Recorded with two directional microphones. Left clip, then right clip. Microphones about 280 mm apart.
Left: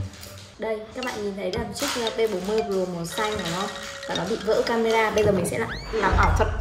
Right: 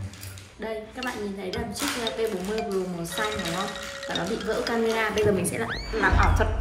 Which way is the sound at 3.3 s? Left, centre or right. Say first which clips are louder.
Left 1 dB; centre.